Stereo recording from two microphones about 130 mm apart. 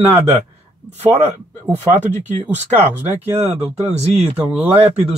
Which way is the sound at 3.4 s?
55° right (ahead or behind).